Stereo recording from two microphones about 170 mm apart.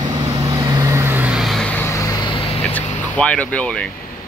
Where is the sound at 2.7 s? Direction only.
5° left (ahead or behind).